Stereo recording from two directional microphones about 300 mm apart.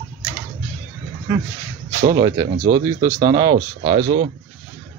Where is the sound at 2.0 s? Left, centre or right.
Centre.